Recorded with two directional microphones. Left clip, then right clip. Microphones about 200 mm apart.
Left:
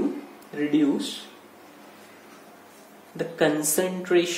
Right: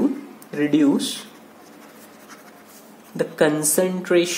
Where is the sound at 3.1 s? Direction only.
25° right (ahead or behind).